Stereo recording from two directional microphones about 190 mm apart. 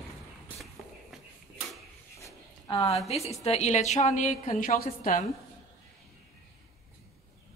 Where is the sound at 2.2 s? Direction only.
25° left (ahead or behind).